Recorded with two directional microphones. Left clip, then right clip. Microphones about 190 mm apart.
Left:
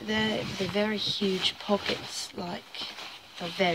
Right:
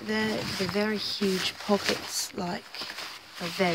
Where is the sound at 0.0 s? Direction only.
30° right (ahead or behind).